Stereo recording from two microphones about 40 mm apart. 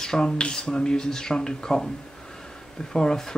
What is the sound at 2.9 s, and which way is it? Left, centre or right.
Speech, centre.